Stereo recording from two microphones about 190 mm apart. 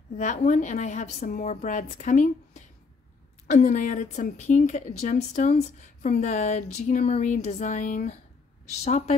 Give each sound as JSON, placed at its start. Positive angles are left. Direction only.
{"t": 0.2, "sound": "a woman's voice", "side_deg": 40}